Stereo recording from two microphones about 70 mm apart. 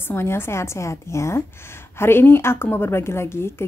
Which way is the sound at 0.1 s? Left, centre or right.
Left.